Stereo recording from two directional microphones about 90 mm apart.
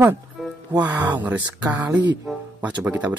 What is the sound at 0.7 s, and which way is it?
Speech, 20° right (ahead or behind).